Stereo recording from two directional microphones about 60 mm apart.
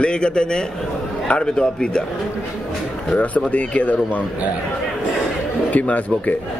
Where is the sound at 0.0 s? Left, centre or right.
Centre.